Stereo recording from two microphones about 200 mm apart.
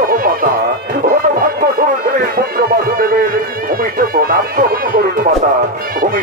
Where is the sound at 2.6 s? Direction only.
45° right (ahead or behind).